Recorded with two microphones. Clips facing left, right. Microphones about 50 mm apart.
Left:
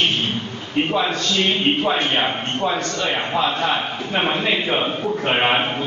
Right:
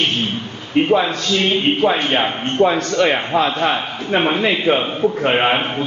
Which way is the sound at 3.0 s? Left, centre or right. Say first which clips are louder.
Right 8 dB; right.